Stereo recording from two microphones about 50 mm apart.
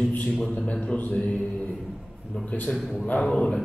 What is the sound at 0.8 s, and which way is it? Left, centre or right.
Speech, left.